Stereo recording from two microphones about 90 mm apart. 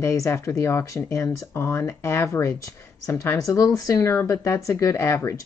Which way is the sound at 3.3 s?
35° left (ahead or behind).